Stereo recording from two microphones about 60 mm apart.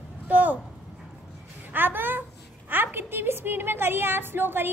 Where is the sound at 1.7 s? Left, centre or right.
Right.